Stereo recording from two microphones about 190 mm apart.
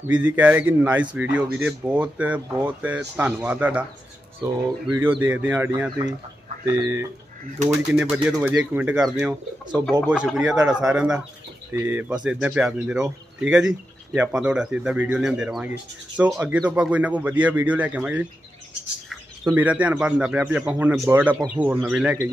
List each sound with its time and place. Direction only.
0.0 s speech: 10° right (ahead or behind)
4.4 s speech: 25° right (ahead or behind)
5.2 s speech: 10° right (ahead or behind)
7.9 s speech: 5° right (ahead or behind)
19.4 s speech: 10° right (ahead or behind)